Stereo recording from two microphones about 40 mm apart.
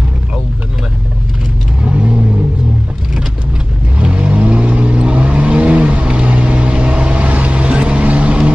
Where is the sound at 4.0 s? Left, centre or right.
Right.